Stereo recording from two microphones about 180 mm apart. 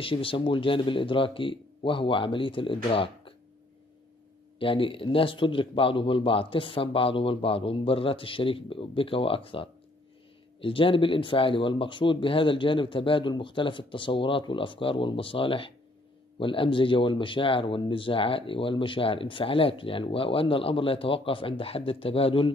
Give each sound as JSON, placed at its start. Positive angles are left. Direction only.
{"t": 0.0, "sound": "speech", "side_deg": 30}
{"t": 4.6, "sound": "speech", "side_deg": 30}